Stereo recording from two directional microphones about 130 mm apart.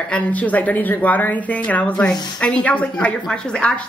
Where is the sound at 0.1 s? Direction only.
10° left (ahead or behind).